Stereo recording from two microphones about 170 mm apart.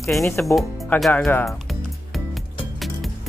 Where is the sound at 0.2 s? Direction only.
15° left (ahead or behind).